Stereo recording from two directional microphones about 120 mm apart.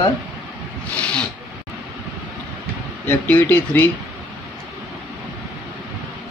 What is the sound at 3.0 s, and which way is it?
Speech, 15° left (ahead or behind).